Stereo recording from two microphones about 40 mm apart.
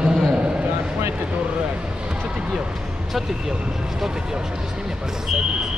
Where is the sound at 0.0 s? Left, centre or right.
Right.